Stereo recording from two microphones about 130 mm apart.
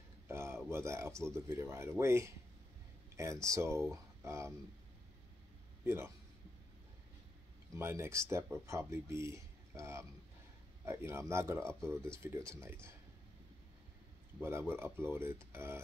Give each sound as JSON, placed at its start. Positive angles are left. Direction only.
{"t": 0.3, "sound": "a sound", "side_deg": -20}
{"t": 0.7, "sound": "speech", "side_deg": -20}
{"t": 5.9, "sound": "speech", "side_deg": -20}
{"t": 7.7, "sound": "speech", "side_deg": -20}
{"t": 14.4, "sound": "speech", "side_deg": -20}